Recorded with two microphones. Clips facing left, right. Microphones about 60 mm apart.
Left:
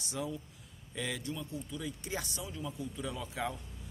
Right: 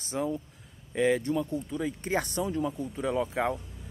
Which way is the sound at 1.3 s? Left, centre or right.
Right.